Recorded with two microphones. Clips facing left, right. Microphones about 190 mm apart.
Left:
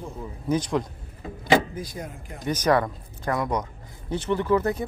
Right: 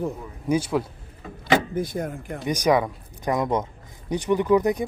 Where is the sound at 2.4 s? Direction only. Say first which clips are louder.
Right 1 dB; 10° right (ahead or behind).